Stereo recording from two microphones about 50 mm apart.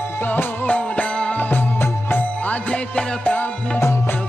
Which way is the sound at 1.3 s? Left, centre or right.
Left.